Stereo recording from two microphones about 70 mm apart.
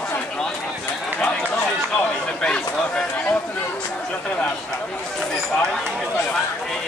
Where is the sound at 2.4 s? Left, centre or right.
Centre.